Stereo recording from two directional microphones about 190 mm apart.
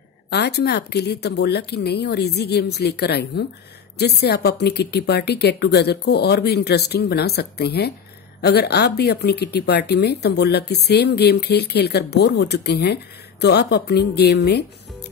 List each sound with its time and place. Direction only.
0.3 s speech: 60° left (ahead or behind)